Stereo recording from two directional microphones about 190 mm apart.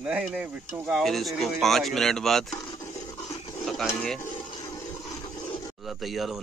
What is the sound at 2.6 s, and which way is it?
Filing, 15° left (ahead or behind).